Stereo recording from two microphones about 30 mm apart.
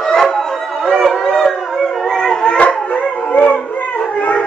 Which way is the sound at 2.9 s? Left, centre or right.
Left.